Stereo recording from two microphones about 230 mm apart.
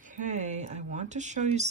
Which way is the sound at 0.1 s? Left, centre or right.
Right.